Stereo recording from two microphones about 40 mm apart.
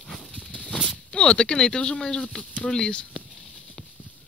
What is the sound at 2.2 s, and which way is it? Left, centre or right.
Speech, left.